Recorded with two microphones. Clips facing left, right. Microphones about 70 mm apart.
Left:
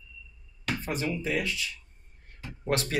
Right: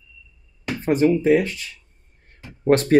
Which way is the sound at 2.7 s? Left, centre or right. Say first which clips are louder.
Right 12 dB; right.